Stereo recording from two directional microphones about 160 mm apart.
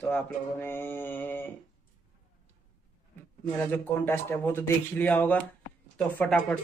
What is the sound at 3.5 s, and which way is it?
Speech, 10° left (ahead or behind).